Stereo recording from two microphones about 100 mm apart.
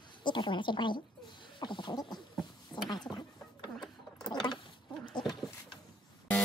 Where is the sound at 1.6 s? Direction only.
50° left (ahead or behind).